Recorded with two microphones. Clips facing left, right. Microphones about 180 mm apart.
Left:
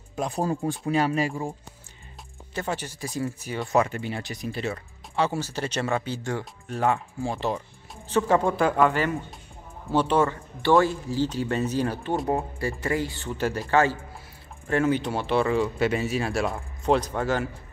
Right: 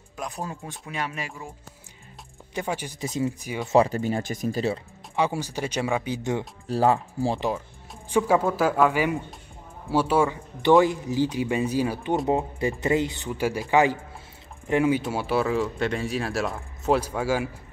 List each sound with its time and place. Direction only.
0.1 s speech: 30° left (ahead or behind)
2.5 s speech: 10° right (ahead or behind)
3.6 s speech: 30° right (ahead or behind)
5.1 s speech: 15° right (ahead or behind)
6.7 s speech: 35° right (ahead or behind)
7.3 s speech: 10° right (ahead or behind)